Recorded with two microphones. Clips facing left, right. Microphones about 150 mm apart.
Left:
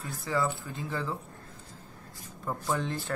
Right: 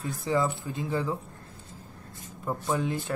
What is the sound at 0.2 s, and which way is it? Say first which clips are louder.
Speech: right 3 dB; 20° right (ahead or behind).